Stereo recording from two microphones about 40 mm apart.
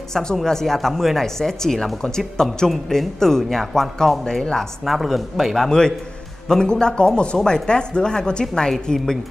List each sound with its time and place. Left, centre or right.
0.1 s speech: centre
4.2 s speech: centre
4.6 s speech: centre
5.7 s speech: centre